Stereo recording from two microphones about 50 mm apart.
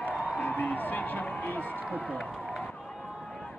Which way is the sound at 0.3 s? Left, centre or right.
Left.